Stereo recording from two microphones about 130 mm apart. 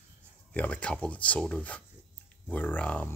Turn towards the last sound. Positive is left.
turn(degrees=10)  # may be behind; listen again after turning